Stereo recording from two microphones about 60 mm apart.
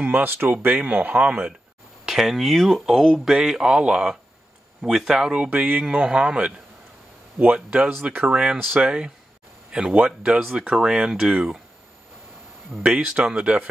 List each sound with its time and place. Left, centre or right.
0.0 s speech: right
2.0 s speech: centre
5.5 s speech: right
5.9 s speech: centre
7.5 s speech: centre
7.9 s speech: right; by 11.3 s centre
12.7 s speech: centre